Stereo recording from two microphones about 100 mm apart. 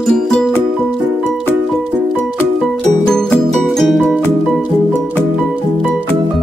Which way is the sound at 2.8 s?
5° left (ahead or behind).